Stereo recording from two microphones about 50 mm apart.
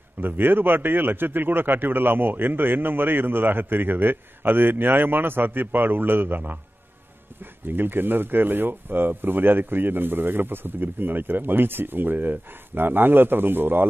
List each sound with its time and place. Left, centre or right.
0.2 s a man's voice: right
7.6 s a man's voice: right